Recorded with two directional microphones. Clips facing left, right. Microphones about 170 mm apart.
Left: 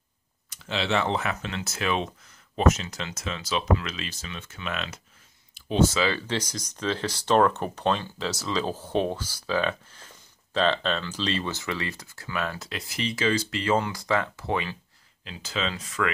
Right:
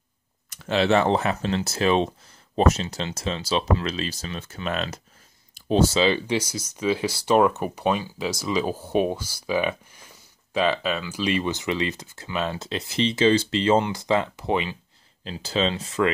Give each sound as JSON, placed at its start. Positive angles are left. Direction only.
{"t": 0.5, "sound": "speech", "side_deg": -50}
{"t": 5.5, "sound": "a sound", "side_deg": -40}
{"t": 5.9, "sound": "speech", "side_deg": -20}
{"t": 15.2, "sound": "speech", "side_deg": -35}